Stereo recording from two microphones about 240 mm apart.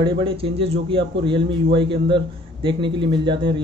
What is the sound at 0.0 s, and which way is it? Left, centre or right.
A man's voice, right.